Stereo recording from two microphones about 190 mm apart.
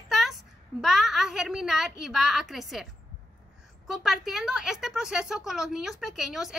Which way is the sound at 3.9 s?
Centre (ahead or behind).